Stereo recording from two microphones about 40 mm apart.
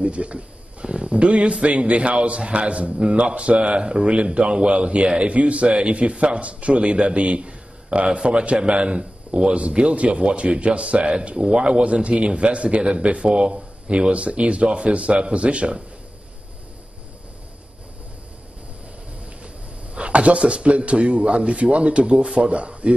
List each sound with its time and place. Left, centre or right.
0.0 s a man's voice: right
11.3 s a man's voice: centre
11.8 s a man's voice: right
19.4 s speech: right